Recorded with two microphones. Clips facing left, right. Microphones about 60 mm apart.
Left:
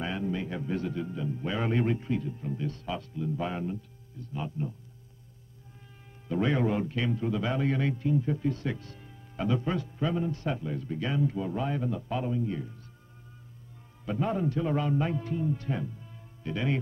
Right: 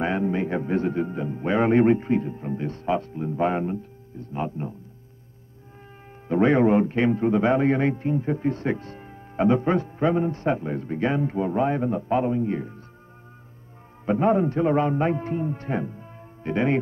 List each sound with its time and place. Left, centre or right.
0.0 s a man's voice: right
6.2 s a man's voice: right
14.0 s a man's voice: right